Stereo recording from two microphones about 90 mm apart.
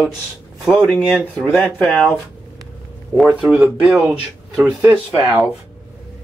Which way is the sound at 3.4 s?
5° right (ahead or behind).